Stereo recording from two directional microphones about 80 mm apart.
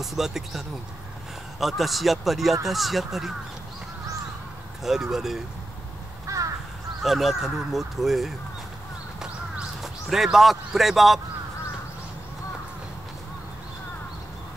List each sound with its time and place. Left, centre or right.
0.0 s speech: centre
4.8 s speech: centre
6.2 s crow: right
7.0 s speech: centre
9.2 s a sound: centre